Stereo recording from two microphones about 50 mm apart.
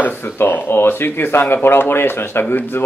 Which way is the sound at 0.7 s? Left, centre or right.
Left.